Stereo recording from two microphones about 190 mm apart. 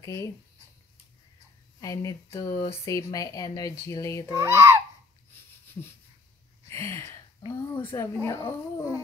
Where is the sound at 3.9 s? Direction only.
15° left (ahead or behind).